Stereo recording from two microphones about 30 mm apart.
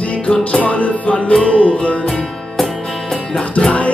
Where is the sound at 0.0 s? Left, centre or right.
Left.